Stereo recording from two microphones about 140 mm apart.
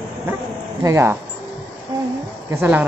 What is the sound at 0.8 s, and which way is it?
Speech, 20° right (ahead or behind).